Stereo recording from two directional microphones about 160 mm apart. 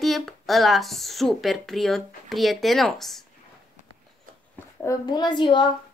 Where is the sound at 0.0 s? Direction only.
Centre (ahead or behind).